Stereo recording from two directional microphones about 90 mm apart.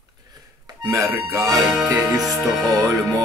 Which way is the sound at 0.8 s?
40° right (ahead or behind).